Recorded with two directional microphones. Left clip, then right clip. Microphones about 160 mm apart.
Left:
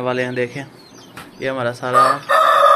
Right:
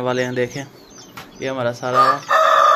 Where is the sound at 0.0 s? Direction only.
15° right (ahead or behind).